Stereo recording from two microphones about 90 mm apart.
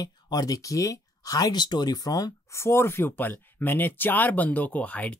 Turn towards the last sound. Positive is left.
turn(degrees=15)  # may be behind; listen again after turning